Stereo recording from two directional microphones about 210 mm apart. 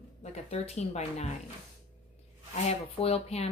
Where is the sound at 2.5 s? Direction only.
30° left (ahead or behind).